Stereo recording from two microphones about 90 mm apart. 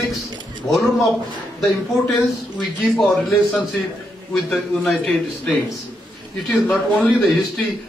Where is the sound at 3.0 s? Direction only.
5° left (ahead or behind).